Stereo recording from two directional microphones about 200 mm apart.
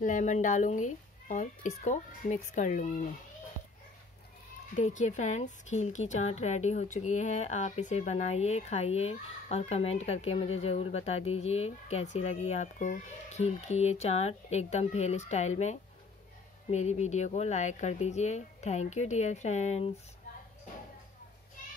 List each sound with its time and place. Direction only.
0.0 s a woman's voice: 40° left (ahead or behind)
4.7 s a woman's voice: 35° left (ahead or behind)